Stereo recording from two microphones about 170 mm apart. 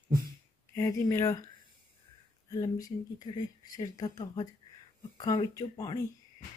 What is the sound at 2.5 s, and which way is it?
Speech, 20° left (ahead or behind).